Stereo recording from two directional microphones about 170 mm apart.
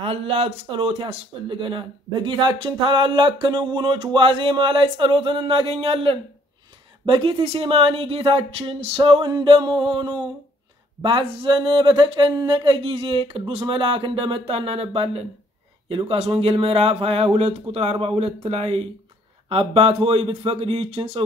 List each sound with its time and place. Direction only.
0.0 s speech: 35° right (ahead or behind)